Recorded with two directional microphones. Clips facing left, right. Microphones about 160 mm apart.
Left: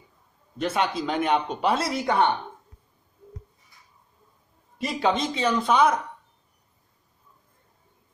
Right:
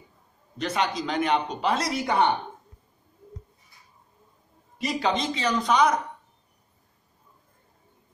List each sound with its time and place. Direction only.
0.6 s a man's voice: 5° left (ahead or behind)
1.9 s a woman's voice: 15° right (ahead or behind)
4.7 s speech: 5° left (ahead or behind)